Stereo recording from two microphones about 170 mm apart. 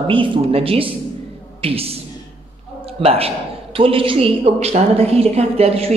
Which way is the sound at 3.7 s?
30° right (ahead or behind).